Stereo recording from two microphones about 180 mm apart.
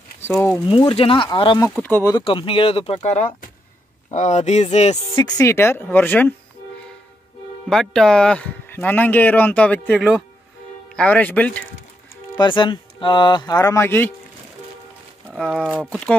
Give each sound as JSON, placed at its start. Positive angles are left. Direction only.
{"t": 0.3, "sound": "speech", "side_deg": 10}
{"t": 0.7, "sound": "speech", "side_deg": 30}
{"t": 1.8, "sound": "speech", "side_deg": 10}
{"t": 2.1, "sound": "speech", "side_deg": 30}
{"t": 5.1, "sound": "speech", "side_deg": 20}
{"t": 7.7, "sound": "speech", "side_deg": 0}
{"t": 12.4, "sound": "speech", "side_deg": 25}
{"t": 15.3, "sound": "speech", "side_deg": 0}